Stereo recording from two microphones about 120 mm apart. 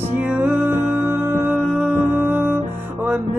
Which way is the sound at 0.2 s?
15° right (ahead or behind).